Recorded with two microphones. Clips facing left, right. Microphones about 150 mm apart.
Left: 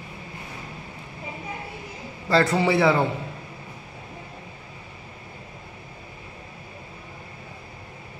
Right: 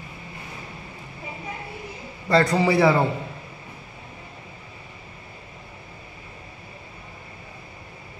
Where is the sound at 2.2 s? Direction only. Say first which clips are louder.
Right 1 dB; centre (ahead or behind).